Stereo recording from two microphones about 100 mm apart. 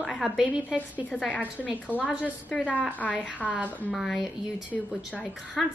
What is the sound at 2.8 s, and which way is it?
Speech, 15° left (ahead or behind).